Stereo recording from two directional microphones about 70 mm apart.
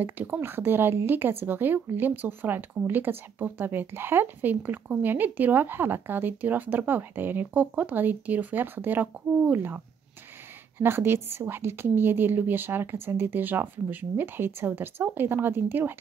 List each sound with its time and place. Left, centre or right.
0.0 s speech: right
10.8 s speech: right